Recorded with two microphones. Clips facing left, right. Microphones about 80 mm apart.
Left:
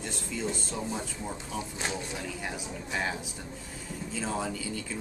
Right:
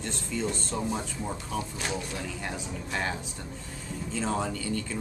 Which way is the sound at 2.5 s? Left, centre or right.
Centre.